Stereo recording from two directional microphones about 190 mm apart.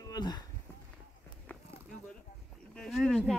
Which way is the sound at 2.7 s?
5° left (ahead or behind).